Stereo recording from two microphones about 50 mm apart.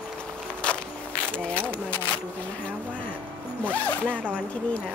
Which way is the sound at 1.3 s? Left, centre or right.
Left.